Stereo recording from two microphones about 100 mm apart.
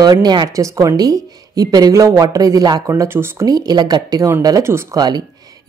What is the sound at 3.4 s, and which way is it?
Speech, 40° right (ahead or behind).